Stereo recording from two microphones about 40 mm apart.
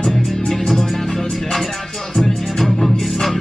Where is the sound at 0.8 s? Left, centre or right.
Centre.